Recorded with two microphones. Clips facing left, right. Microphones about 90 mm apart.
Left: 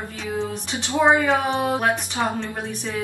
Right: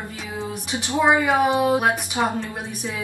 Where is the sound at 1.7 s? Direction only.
15° right (ahead or behind).